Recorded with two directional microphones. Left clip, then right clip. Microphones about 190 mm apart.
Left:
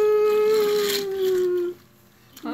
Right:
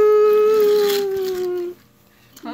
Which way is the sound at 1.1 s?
15° right (ahead or behind).